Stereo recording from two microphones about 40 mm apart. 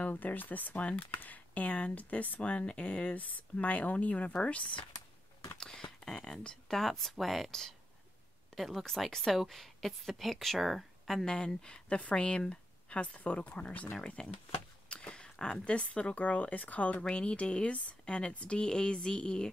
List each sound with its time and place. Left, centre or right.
0.0 s speech: left
2.4 s speech: left
5.6 s a sound: centre
6.2 s speech: centre
6.8 s a woman's voice: centre
8.5 s a woman's voice: centre
11.2 s speech: left
14.9 s a sound: left
15.4 s speech: left
15.8 s speech: left
17.1 s speech: left
18.6 s speech: left